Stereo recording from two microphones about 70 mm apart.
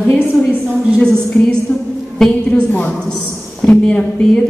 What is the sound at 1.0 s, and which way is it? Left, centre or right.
A woman's voice, centre.